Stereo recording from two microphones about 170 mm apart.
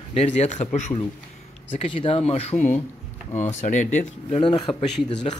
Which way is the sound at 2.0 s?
35° left (ahead or behind).